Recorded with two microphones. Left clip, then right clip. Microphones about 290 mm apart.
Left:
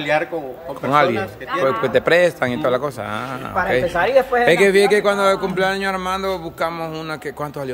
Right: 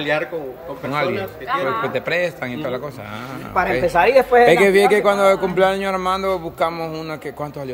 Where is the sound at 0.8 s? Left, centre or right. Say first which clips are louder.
Left 6 dB; centre.